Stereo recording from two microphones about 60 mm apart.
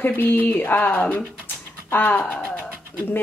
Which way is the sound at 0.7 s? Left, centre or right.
Left.